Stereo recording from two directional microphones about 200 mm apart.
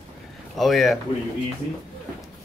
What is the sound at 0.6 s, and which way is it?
Speech, centre (ahead or behind).